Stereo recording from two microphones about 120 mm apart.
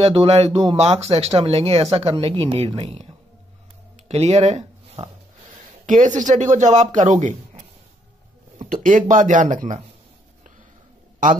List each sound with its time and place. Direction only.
0.0 s speech: 55° right (ahead or behind)
4.1 s speech: 65° right (ahead or behind)
5.9 s speech: 90° right
8.8 s speech: 90° right